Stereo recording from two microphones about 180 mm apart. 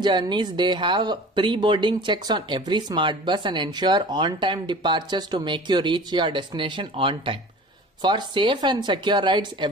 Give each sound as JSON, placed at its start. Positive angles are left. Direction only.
{"t": 0.0, "sound": "speech", "side_deg": -25}